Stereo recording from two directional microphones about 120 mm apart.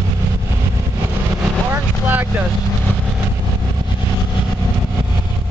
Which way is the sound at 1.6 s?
15° right (ahead or behind).